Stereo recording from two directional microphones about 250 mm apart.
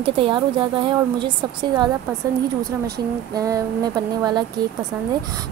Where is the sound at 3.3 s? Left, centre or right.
Centre.